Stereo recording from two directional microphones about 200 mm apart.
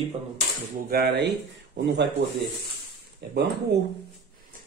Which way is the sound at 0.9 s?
50° right (ahead or behind).